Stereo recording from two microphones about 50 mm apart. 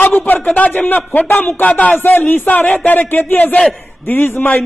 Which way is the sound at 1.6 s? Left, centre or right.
Left.